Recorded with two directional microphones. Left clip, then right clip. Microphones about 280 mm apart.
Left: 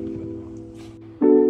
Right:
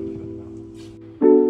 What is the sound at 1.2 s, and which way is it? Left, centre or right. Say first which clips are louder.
Music: right 2 dB; centre.